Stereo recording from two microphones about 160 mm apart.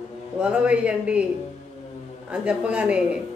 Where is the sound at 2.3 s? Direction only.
5° right (ahead or behind).